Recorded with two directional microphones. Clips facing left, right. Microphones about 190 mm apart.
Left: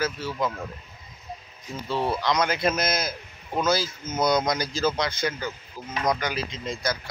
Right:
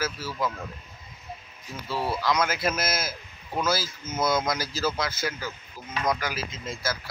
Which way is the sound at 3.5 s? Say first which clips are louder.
Left 2 dB; 20° left (ahead or behind).